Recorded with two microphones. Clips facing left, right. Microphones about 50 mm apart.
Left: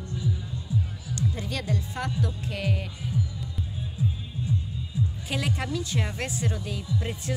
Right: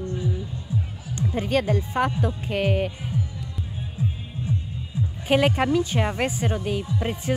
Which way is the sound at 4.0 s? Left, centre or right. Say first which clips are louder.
Right 1 dB; right.